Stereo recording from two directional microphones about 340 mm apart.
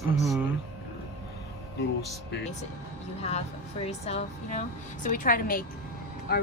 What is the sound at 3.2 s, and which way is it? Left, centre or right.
Speech, centre.